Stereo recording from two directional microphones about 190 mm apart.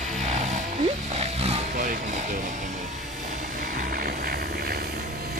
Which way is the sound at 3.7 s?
50° right (ahead or behind).